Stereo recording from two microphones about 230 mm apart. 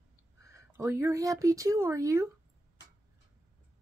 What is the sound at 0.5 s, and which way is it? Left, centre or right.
A woman's voice, centre.